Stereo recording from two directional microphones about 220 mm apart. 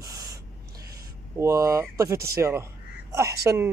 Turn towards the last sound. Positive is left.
turn(degrees=-15)  # may be behind; listen again after turning